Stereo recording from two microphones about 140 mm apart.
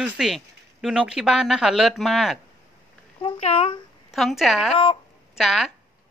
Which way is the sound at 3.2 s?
40° left (ahead or behind).